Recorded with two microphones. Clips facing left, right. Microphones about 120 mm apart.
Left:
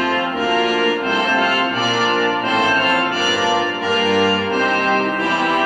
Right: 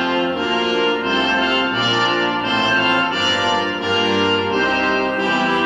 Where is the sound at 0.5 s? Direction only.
40° left (ahead or behind).